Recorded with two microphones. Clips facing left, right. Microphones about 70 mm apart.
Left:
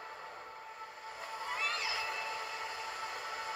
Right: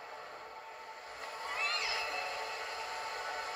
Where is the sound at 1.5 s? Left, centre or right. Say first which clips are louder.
Even; centre.